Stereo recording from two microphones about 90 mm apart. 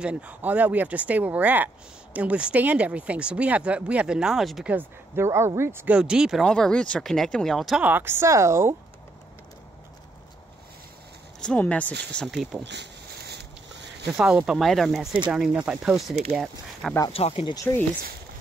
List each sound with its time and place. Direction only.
0.0 s speech: 15° right (ahead or behind)
4.6 s speech: 25° right (ahead or behind)
5.9 s speech: 10° right (ahead or behind)
6.4 s speech: 5° left (ahead or behind)
7.8 s speech: 25° right (ahead or behind)
11.4 s speech: 15° left (ahead or behind)
12.3 s speech: centre (ahead or behind)
14.0 s speech: 10° right (ahead or behind)
17.1 s speech: 85° left